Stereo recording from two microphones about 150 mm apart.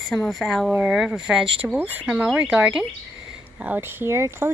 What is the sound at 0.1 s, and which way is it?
Speech, centre (ahead or behind).